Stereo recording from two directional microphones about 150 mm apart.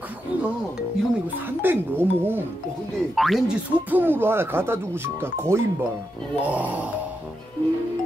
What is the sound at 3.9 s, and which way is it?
Speech, 15° right (ahead or behind).